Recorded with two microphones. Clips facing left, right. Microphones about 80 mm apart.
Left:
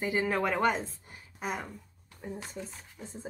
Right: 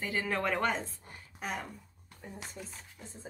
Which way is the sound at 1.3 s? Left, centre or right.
Centre.